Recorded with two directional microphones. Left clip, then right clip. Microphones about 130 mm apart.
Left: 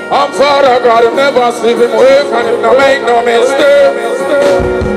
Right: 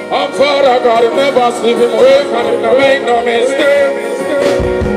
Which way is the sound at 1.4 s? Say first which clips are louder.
Left 1 dB; 5° right (ahead or behind).